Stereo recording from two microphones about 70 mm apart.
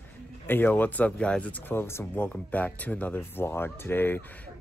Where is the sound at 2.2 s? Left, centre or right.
Left.